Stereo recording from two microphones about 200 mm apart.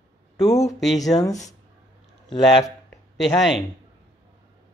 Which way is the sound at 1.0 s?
15° left (ahead or behind).